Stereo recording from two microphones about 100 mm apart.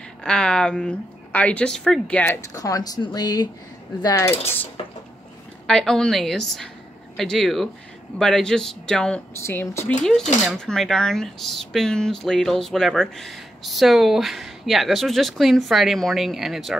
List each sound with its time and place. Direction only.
0.2 s speech: 10° left (ahead or behind)
2.4 s speech: 35° left (ahead or behind)
4.1 s speech: 25° left (ahead or behind)
4.8 s speech: 65° left (ahead or behind)
5.7 s speech: 5° left (ahead or behind)
9.4 s speech: 25° left (ahead or behind)
10.0 s speech: 5° left (ahead or behind)